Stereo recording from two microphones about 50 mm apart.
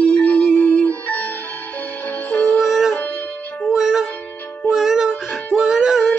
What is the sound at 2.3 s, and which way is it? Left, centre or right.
Music, left.